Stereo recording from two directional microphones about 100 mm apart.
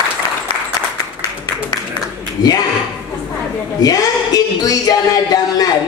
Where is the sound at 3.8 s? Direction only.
40° left (ahead or behind).